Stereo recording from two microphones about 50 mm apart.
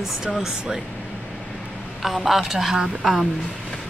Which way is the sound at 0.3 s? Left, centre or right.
Centre.